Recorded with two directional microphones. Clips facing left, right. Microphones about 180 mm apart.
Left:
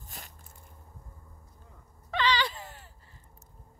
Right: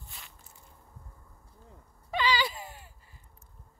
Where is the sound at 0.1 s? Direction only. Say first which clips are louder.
Left 6 dB; 45° left (ahead or behind).